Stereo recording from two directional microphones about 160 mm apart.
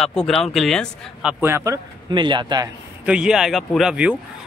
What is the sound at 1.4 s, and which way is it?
Speech, 15° right (ahead or behind).